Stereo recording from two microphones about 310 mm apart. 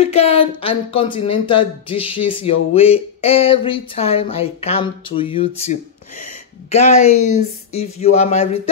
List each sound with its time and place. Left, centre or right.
0.0 s speech: centre